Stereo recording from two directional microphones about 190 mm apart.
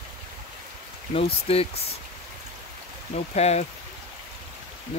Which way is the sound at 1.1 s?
30° left (ahead or behind).